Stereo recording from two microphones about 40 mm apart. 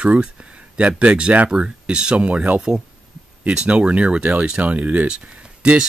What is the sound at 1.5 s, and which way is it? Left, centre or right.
Speech, right.